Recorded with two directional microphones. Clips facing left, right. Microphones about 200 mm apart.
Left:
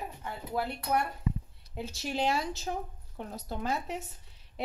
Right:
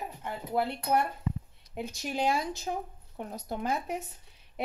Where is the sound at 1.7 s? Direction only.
15° right (ahead or behind).